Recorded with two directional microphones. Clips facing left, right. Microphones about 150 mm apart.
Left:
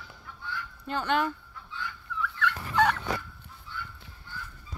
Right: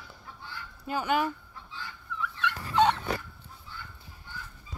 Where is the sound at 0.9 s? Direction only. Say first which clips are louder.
Even; 5° right (ahead or behind).